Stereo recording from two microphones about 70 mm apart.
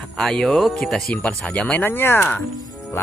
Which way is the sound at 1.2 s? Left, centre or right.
Centre.